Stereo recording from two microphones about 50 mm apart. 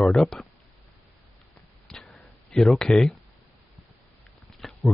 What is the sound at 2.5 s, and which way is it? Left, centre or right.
Speech, centre.